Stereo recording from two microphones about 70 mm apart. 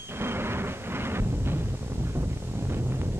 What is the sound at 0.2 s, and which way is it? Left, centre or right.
Music, right.